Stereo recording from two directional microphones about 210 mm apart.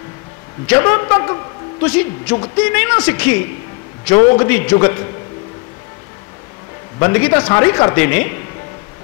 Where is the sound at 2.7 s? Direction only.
10° left (ahead or behind).